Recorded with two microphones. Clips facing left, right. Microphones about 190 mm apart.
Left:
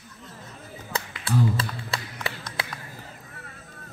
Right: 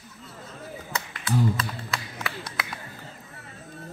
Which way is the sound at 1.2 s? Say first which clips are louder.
Even; 30° left (ahead or behind).